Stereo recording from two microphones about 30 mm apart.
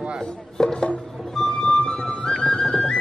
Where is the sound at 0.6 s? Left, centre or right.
Left.